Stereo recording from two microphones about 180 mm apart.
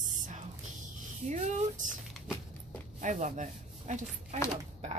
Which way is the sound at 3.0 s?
45° right (ahead or behind).